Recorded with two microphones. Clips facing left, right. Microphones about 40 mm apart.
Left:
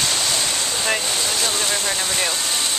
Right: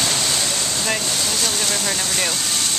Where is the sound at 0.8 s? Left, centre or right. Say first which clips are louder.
Left 2 dB; centre.